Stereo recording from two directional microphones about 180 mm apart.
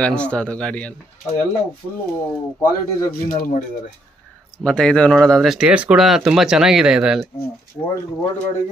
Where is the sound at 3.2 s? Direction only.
50° left (ahead or behind).